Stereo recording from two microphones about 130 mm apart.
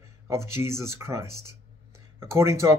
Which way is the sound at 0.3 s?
20° right (ahead or behind).